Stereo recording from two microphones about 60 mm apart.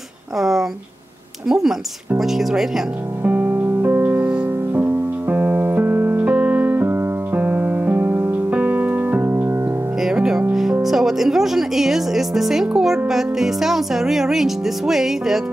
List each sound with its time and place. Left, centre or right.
0.4 s speech: centre
3.3 s music: right
10.1 s music: centre
10.8 s speech: centre